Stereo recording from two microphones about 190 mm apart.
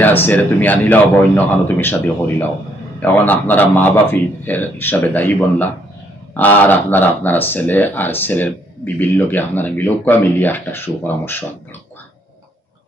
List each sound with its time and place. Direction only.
0.0 s speech: 10° left (ahead or behind)